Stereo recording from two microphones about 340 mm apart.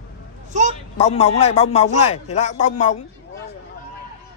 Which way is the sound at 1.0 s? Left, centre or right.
Centre.